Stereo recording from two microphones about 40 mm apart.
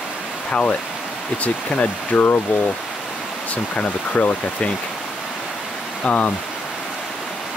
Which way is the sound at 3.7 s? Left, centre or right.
Left.